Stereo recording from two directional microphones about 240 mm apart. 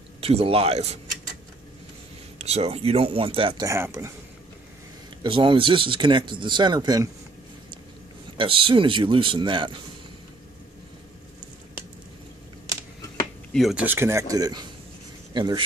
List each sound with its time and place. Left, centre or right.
0.2 s speech: right
2.3 s speech: right
5.2 s speech: right
8.4 s speech: right
13.5 s a man's voice: centre